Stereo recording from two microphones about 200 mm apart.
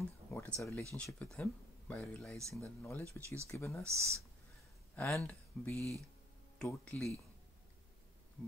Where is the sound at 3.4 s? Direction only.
15° left (ahead or behind).